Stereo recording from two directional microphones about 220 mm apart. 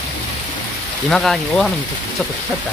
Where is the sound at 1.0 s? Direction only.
5° left (ahead or behind).